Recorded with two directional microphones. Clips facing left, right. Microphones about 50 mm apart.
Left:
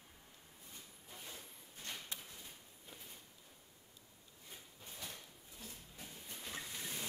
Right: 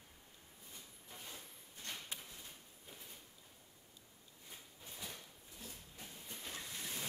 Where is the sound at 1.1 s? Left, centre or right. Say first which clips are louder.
Even; centre.